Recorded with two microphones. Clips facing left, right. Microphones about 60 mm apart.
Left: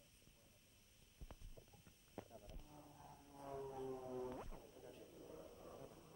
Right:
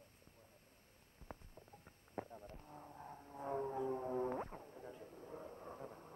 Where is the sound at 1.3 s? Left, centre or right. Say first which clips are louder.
Right 9 dB; right.